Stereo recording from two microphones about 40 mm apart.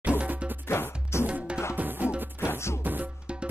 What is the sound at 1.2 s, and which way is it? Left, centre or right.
Music, right.